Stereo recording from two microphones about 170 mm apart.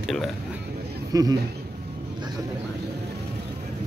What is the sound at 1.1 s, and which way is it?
Speech, 20° right (ahead or behind).